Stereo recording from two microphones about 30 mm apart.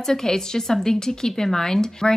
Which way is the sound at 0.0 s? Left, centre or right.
Centre.